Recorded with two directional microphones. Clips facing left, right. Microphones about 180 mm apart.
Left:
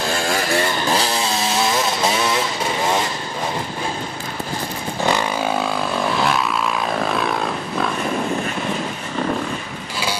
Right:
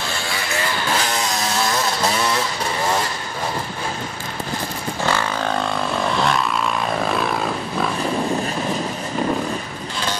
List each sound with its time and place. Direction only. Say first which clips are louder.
0.1 s chainsaw: left 8 dB; 45° left (ahead or behind); by 2.1 s 25° left (ahead or behind)
5.0 s vehicle: left 2 dB; 15° left (ahead or behind)
7.1 s wild animals: even; centre (ahead or behind)